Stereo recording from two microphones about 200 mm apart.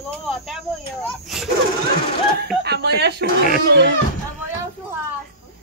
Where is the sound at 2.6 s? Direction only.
55° right (ahead or behind).